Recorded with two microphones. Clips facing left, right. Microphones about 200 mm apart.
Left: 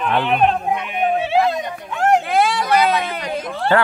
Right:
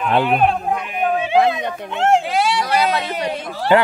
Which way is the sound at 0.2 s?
5° right (ahead or behind).